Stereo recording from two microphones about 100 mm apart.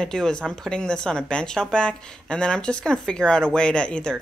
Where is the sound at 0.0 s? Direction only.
5° left (ahead or behind).